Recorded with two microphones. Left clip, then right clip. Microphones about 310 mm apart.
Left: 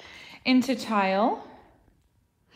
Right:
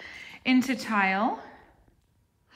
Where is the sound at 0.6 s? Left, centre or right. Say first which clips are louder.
Even; right.